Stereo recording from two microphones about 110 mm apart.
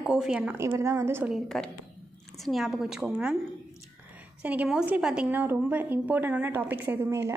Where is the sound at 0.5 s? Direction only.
25° right (ahead or behind).